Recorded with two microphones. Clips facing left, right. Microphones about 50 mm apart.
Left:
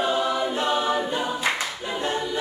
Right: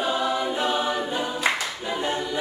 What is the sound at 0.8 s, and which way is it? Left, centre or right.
A capella, centre.